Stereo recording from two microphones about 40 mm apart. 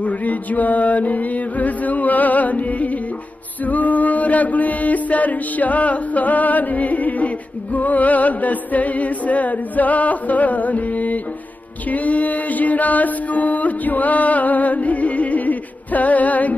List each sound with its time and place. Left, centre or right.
0.0 s music: left
3.6 s mantra: left
11.9 s a sound: left